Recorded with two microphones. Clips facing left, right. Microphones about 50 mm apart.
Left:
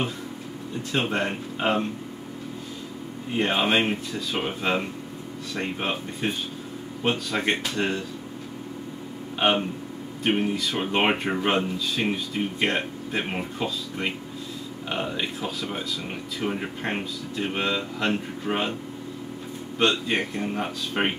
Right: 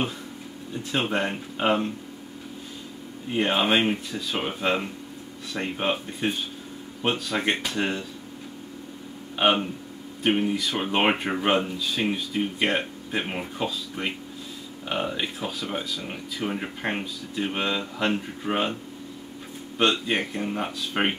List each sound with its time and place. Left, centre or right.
1.1 s speech: centre
3.3 s speech: centre
10.2 s speech: centre
19.8 s speech: centre